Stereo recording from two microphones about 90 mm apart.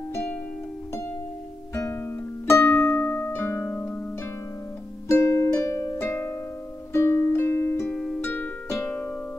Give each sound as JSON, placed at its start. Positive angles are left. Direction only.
{"t": 0.1, "sound": "music", "side_deg": 20}
{"t": 2.4, "sound": "music", "side_deg": 25}
{"t": 5.0, "sound": "music", "side_deg": 35}
{"t": 7.9, "sound": "music", "side_deg": 10}
{"t": 8.8, "sound": "music", "side_deg": 20}